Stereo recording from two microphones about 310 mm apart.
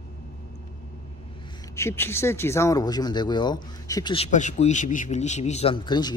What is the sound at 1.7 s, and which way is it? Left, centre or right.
Speech, centre.